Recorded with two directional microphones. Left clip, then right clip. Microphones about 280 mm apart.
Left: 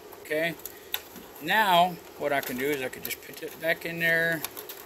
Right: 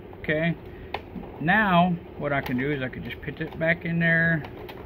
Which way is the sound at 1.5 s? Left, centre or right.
Centre.